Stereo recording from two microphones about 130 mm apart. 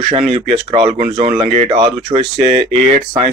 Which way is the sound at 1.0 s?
55° right (ahead or behind).